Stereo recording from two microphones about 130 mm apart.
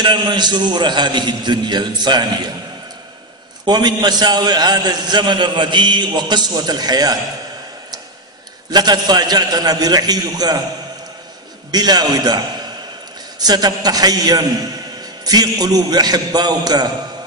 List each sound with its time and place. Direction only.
0.0 s a man's voice: 35° right (ahead or behind)
3.6 s a man's voice: 35° right (ahead or behind)
8.6 s a man's voice: 30° right (ahead or behind)
11.7 s a man's voice: 30° right (ahead or behind)